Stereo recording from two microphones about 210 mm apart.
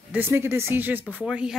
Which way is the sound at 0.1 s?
10° right (ahead or behind).